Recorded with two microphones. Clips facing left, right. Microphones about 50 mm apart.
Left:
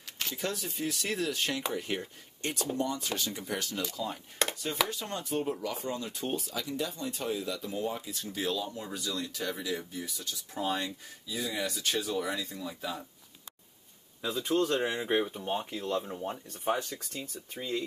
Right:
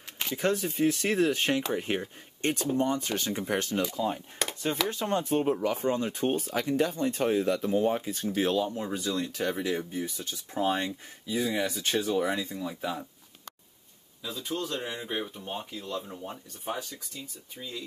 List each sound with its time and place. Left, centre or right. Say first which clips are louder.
0.4 s speech: right 9 dB; right
4.4 s chopping: left 2 dB; centre
4.8 s speech: right 8 dB; right
14.2 s speech: left 5 dB; left
14.8 s speech: left 5 dB; left
16.0 s speech: left 3 dB; centre
16.6 s speech: left 4 dB; left
17.6 s speech: left 5 dB; left